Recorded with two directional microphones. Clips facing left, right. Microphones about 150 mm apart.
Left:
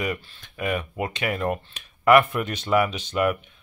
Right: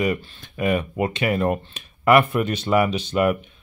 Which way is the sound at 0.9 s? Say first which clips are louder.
Right 5 dB; 5° right (ahead or behind).